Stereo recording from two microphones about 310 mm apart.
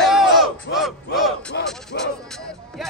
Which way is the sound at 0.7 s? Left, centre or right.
Centre.